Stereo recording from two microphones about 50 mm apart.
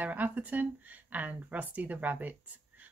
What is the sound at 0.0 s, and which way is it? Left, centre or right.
Speech, right.